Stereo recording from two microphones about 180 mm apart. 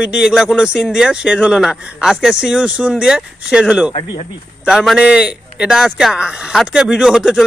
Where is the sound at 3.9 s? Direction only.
40° left (ahead or behind).